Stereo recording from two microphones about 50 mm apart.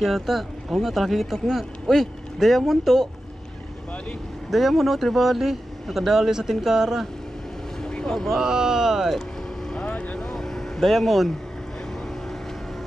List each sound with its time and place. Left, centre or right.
0.0 s speech: centre
4.5 s speech: centre
7.8 s boat: centre
8.3 s speech: centre
9.7 s vehicle: left
10.2 s vehicle: centre